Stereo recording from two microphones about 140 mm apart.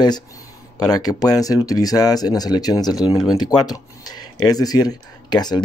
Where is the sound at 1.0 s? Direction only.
25° left (ahead or behind).